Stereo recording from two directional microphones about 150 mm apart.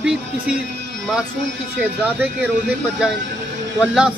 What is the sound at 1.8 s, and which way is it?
Speech, 10° right (ahead or behind).